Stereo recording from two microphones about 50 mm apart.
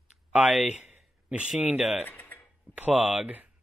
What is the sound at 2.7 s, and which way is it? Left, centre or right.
Speech, right.